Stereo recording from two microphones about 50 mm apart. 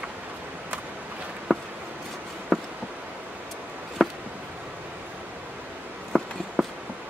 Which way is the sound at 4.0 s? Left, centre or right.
Centre.